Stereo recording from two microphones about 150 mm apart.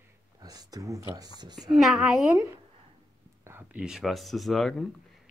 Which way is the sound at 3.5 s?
10° right (ahead or behind).